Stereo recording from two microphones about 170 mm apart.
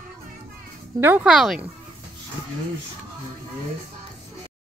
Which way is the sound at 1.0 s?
15° right (ahead or behind).